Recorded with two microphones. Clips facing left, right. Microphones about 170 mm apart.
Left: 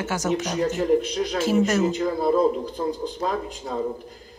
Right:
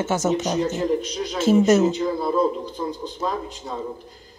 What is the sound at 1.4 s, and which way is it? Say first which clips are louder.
Speech: right 6 dB; 25° right (ahead or behind).